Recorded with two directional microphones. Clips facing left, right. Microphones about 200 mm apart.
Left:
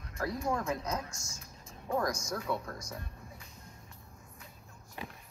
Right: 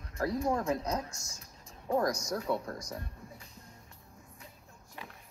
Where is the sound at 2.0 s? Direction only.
35° right (ahead or behind).